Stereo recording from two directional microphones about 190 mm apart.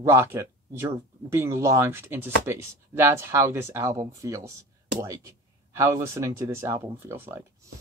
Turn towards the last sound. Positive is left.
turn(degrees=-15)  # may be behind; listen again after turning